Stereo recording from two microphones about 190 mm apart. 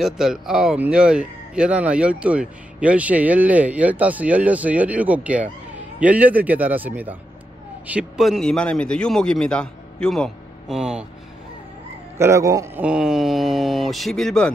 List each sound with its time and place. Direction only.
0.0 s a man's voice: centre (ahead or behind)
12.2 s speech: 15° right (ahead or behind)
12.8 s a man's voice: 5° right (ahead or behind)